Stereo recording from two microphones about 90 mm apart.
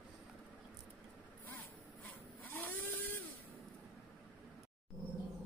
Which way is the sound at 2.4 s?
20° left (ahead or behind).